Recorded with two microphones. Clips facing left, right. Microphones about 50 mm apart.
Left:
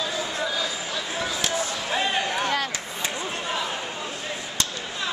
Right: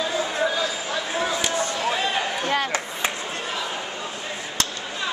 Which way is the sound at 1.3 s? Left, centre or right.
Centre.